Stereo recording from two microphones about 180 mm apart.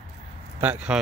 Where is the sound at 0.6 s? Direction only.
5° right (ahead or behind).